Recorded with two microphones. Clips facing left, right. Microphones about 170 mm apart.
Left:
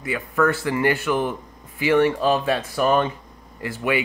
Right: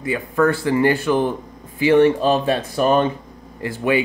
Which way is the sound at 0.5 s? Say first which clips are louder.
Right 4 dB; 15° right (ahead or behind).